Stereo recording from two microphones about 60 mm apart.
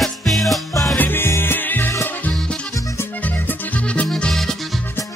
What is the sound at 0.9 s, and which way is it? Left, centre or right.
Music, left.